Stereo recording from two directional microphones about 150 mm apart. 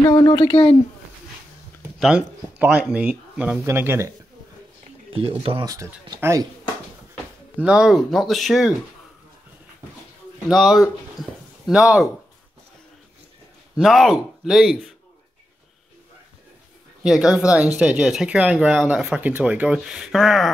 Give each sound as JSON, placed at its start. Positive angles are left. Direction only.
{"t": 0.1, "sound": "speech", "side_deg": 25}
{"t": 2.0, "sound": "speech", "side_deg": -5}
{"t": 5.1, "sound": "speech", "side_deg": -40}
{"t": 7.6, "sound": "speech", "side_deg": -5}
{"t": 10.5, "sound": "speech", "side_deg": 0}
{"t": 13.7, "sound": "speech", "side_deg": 0}
{"t": 17.0, "sound": "speech", "side_deg": -5}